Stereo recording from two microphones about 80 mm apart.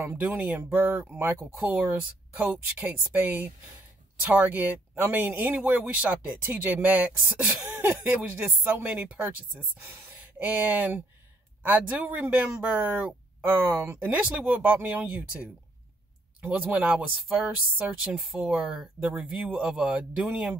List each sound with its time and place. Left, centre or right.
0.0 s speech: right
13.4 s speech: right
14.0 s speech: right
18.9 s speech: right
19.2 s speech: centre